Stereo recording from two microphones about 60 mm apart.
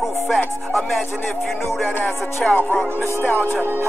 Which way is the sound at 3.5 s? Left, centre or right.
Right.